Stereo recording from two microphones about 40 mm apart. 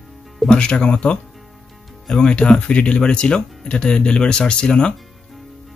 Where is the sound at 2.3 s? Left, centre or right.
Left.